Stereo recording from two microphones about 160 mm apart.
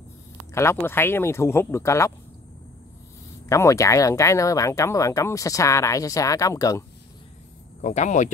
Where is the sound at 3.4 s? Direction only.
20° left (ahead or behind).